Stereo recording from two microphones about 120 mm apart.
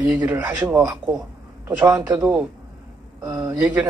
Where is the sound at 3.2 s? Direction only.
30° right (ahead or behind).